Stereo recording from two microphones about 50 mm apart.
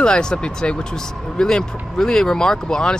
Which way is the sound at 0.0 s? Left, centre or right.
Centre.